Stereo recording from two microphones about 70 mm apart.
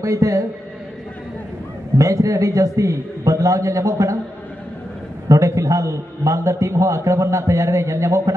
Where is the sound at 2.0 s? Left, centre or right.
Right.